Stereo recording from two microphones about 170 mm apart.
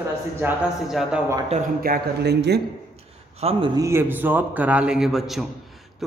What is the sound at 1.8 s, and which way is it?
Speech, 65° right (ahead or behind).